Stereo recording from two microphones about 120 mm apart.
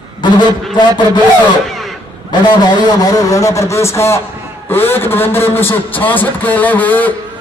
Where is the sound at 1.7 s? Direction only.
Centre (ahead or behind).